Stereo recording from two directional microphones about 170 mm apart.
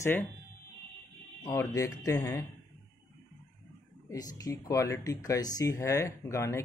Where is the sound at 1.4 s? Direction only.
20° left (ahead or behind).